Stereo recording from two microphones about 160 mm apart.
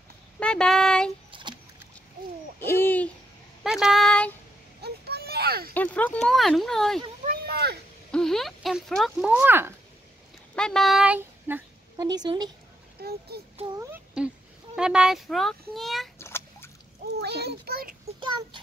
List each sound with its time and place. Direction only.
0.4 s speech: 5° left (ahead or behind)
1.3 s rodents: 30° right (ahead or behind)
2.6 s hoot: 15° left (ahead or behind)
3.6 s female singing: centre (ahead or behind)
4.8 s children playing: 90° right
5.8 s a child's voice: 10° left (ahead or behind)
7.2 s a sound: 80° right
8.1 s speech: 5° left (ahead or behind); by 9.8 s 15° right (ahead or behind)
10.5 s speech: 5° left (ahead or behind); by 11.6 s 10° right (ahead or behind)
12.0 s speech: 25° right (ahead or behind)
13.0 s a child's voice: 75° right (ahead or behind)
14.8 s a child's voice: 5° right (ahead or behind)
16.2 s a sound: 15° left (ahead or behind)
17.2 s a child's voice: 90° right; by 17.9 s 75° right (ahead or behind)